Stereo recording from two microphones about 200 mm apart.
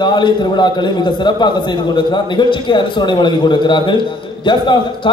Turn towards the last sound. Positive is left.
turn(degrees=25)  # may be behind; listen again after turning